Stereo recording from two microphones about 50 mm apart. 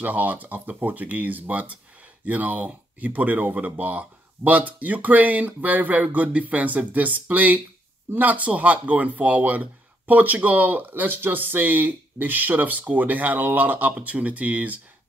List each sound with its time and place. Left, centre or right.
0.0 s speech: right